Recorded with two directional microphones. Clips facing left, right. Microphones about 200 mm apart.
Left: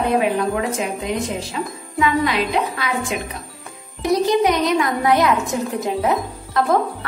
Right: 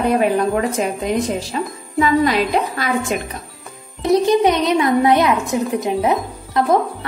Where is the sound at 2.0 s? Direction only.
40° right (ahead or behind).